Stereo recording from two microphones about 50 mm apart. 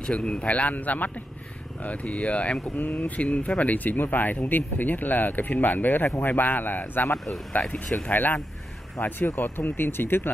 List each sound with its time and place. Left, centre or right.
0.0 s speech: left
2.8 s speech: left
7.5 s speech: left
8.1 s speech: left